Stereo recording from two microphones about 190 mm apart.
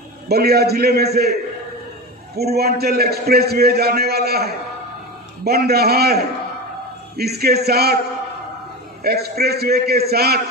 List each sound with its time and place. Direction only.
0.3 s a man's voice: 55° right (ahead or behind)
2.3 s a man's voice: 55° right (ahead or behind)
9.0 s a man's voice: 55° right (ahead or behind)